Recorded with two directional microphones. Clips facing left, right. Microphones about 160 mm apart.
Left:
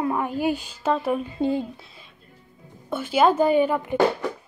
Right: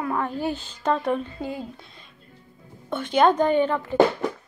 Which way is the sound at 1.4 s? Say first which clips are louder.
Left 8 dB; 25° left (ahead or behind).